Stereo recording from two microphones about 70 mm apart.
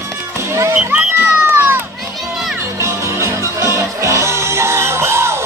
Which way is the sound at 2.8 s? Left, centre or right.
Right.